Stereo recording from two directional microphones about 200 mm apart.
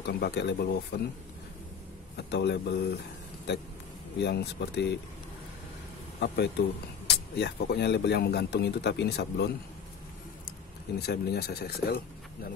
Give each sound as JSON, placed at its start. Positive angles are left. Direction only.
{"t": 0.0, "sound": "a man's voice", "side_deg": 55}
{"t": 2.1, "sound": "a man's voice", "side_deg": 55}
{"t": 4.2, "sound": "a man's voice", "side_deg": 55}
{"t": 6.1, "sound": "a man's voice", "side_deg": 55}
{"t": 11.0, "sound": "speech", "side_deg": 50}